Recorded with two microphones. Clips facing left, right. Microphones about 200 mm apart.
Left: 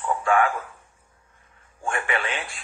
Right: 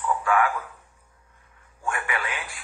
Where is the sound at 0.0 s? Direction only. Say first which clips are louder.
Left 2 dB; 25° left (ahead or behind).